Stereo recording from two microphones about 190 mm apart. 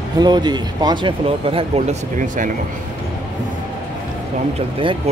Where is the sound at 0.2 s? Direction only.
20° right (ahead or behind).